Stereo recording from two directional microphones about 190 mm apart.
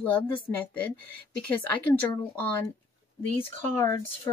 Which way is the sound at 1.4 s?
10° left (ahead or behind).